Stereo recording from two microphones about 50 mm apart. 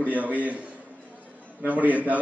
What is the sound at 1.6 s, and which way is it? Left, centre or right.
Speech, right.